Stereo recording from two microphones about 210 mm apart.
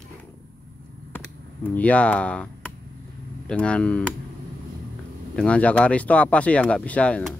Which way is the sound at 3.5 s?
5° left (ahead or behind).